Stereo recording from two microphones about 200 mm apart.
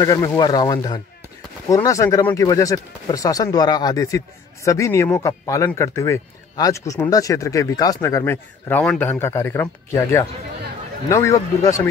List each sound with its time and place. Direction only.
0.0 s speech: 15° left (ahead or behind)